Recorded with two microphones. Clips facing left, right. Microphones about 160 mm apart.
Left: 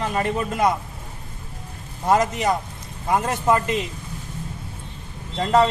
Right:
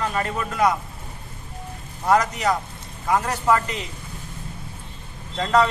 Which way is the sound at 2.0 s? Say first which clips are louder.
Left 1 dB; 25° left (ahead or behind).